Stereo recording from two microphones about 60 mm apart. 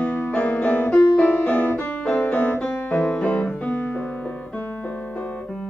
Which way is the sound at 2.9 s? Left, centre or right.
Centre.